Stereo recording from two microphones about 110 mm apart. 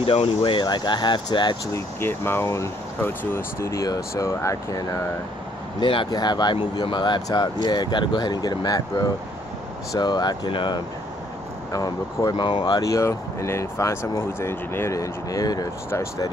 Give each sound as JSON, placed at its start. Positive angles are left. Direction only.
{"t": 0.0, "sound": "speech", "side_deg": 60}
{"t": 1.7, "sound": "speech", "side_deg": 20}
{"t": 5.8, "sound": "speech", "side_deg": 50}
{"t": 6.0, "sound": "speech", "side_deg": 40}